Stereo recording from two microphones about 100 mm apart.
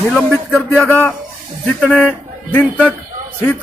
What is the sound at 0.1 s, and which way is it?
Speech, centre (ahead or behind).